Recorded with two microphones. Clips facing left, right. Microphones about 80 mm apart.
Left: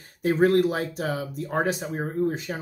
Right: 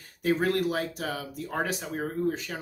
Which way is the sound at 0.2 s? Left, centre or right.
Left.